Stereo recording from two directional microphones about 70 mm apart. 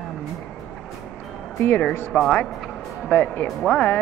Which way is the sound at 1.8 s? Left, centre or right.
Left.